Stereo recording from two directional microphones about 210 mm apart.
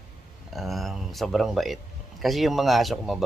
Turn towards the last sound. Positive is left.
turn(degrees=0)  # may be behind; listen again after turning